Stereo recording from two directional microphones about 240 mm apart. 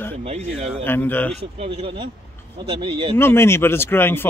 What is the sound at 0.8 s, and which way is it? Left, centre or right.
Speech, centre.